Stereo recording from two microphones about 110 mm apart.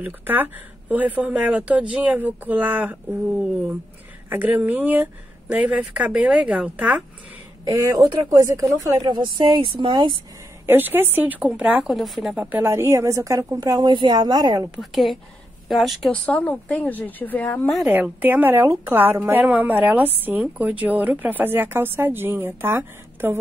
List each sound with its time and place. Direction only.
0.0 s speech: 15° right (ahead or behind)
7.6 s a woman's voice: 30° right (ahead or behind); by 10.1 s 45° right (ahead or behind)
10.7 s speech: 20° right (ahead or behind); by 12.4 s centre (ahead or behind)
12.4 s a woman's voice: 15° right (ahead or behind); by 14.7 s 35° right (ahead or behind)
14.8 s speech: centre (ahead or behind)
16.1 s a woman's voice: 15° left (ahead or behind)
17.8 s speech: 15° right (ahead or behind)